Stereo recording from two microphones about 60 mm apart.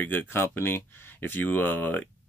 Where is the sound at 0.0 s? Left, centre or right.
Left.